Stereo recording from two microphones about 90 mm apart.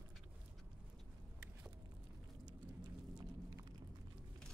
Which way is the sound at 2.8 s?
55° right (ahead or behind).